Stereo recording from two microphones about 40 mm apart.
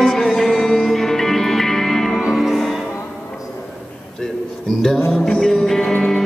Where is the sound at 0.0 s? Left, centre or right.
Centre.